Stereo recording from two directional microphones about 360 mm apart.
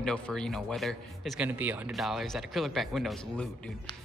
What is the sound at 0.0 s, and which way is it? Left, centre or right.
Speech, centre.